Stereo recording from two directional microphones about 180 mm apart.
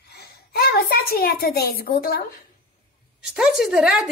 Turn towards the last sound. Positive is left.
turn(degrees=-5)  # may be behind; listen again after turning